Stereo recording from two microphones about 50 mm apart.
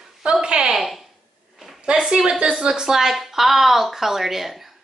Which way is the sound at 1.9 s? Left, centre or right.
Centre.